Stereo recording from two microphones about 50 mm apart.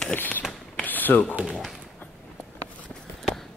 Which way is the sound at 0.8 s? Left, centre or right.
Left.